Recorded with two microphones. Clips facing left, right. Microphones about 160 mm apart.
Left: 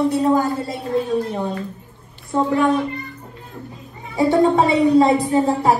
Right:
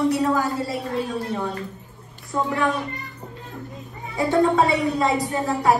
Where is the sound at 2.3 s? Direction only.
30° left (ahead or behind).